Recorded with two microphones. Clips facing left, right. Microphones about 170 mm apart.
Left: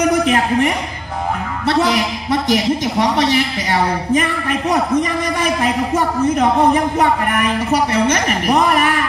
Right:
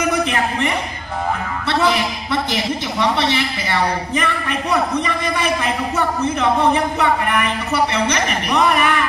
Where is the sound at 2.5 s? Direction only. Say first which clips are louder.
Left 6 dB; 45° left (ahead or behind).